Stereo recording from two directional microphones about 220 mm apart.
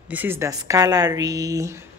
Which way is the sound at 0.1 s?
10° right (ahead or behind).